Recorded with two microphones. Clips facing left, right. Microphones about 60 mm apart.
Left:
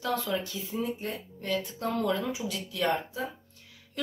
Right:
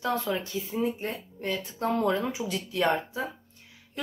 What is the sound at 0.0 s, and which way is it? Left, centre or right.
Speech, right.